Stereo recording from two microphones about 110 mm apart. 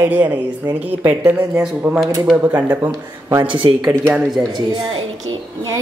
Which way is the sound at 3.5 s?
50° right (ahead or behind).